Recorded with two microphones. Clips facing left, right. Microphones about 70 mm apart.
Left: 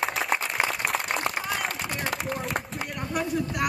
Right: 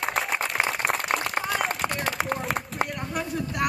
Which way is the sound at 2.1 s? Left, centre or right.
Right.